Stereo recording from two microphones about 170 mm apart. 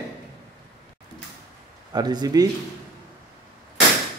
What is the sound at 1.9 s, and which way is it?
Speech, 25° right (ahead or behind).